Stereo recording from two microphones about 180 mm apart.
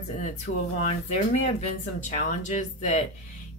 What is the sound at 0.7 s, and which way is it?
Speech, 40° left (ahead or behind).